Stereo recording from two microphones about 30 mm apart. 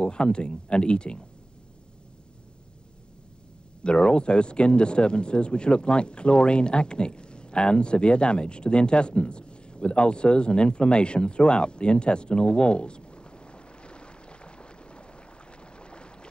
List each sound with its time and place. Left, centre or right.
0.0 s speech: left
3.8 s speech: left